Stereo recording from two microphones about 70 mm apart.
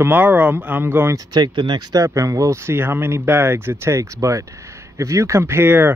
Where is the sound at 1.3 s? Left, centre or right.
Right.